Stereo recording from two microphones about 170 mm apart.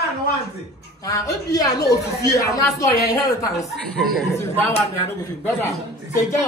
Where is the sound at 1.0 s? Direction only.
20° left (ahead or behind).